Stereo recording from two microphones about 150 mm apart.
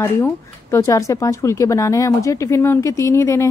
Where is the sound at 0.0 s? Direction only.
20° left (ahead or behind).